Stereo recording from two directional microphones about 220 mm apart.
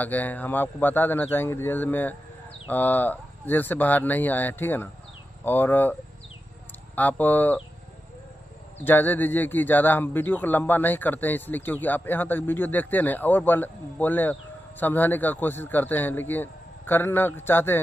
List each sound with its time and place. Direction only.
0.0 s speech: 5° left (ahead or behind)
7.0 s speech: 10° left (ahead or behind)
8.8 s speech: 10° left (ahead or behind)